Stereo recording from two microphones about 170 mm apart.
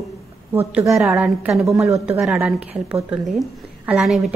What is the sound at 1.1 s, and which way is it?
A woman's voice, centre (ahead or behind).